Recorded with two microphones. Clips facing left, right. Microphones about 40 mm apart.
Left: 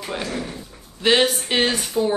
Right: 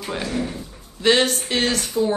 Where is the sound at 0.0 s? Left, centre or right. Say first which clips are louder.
Right 1 dB; centre.